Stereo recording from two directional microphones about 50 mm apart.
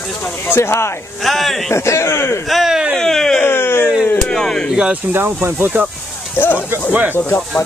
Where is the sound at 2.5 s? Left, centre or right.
Centre.